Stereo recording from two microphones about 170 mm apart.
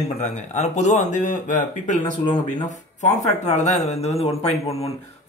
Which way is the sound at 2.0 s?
25° left (ahead or behind).